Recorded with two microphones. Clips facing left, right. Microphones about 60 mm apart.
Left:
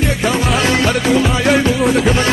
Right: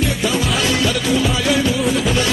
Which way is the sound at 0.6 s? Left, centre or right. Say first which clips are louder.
Left 4 dB; left.